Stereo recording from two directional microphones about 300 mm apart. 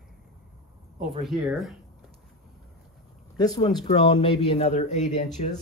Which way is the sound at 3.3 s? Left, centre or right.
Centre.